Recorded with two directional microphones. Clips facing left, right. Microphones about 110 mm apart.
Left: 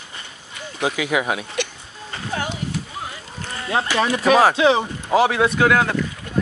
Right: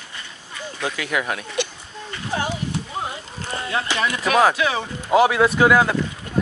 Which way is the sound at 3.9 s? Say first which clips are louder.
Left 3 dB; 30° left (ahead or behind).